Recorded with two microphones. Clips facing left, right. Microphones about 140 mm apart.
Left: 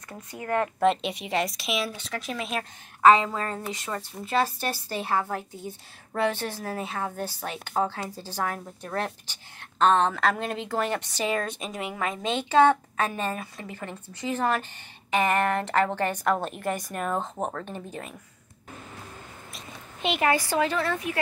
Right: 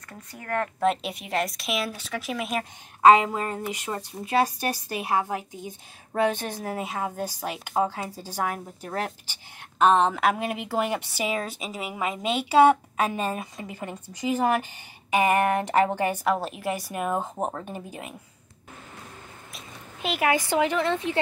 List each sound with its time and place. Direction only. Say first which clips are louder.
0.3 s speech: left 2 dB; 20° left (ahead or behind)
0.7 s speech: left 1 dB; 5° right (ahead or behind)
3.0 s a woman's voice: right 2 dB; 15° right (ahead or behind)
19.5 s a sound: right 1 dB; centre (ahead or behind)
20.2 s a woman's voice: right 2 dB; 20° right (ahead or behind)